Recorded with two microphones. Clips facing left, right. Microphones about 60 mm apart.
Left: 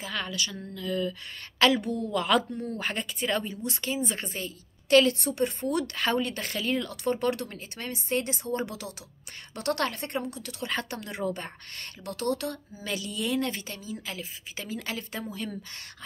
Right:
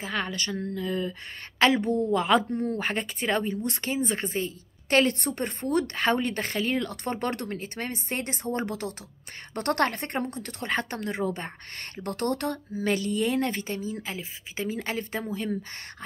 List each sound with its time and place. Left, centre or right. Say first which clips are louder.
0.0 s speech: right 2 dB; right
5.2 s speech: left 2 dB; right
12.0 s speech: right 2 dB; right